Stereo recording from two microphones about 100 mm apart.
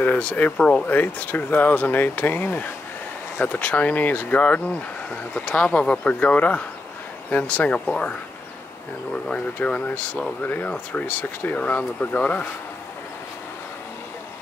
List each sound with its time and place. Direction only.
0.0 s speech: 15° left (ahead or behind)
9.1 s speech: 10° left (ahead or behind)